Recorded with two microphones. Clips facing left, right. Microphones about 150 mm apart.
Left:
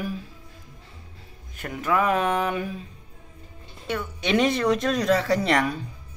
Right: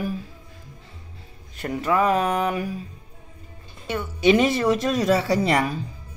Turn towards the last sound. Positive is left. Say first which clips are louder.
# right 1 dB
turn(degrees=-5)  # may be behind; listen again after turning